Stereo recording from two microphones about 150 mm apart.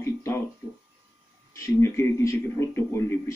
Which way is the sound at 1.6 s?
20° left (ahead or behind).